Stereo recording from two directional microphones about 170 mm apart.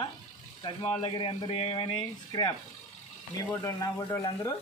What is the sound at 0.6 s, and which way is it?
Speech, 30° left (ahead or behind).